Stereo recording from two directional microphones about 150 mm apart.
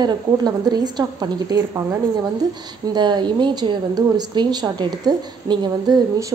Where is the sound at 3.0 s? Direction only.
30° right (ahead or behind).